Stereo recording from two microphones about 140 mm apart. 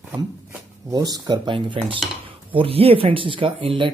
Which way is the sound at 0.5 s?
25° right (ahead or behind).